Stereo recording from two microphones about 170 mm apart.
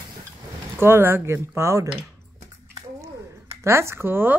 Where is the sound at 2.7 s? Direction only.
15° right (ahead or behind).